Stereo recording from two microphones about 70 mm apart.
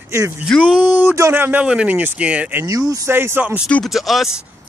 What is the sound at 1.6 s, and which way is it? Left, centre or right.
Speech, centre.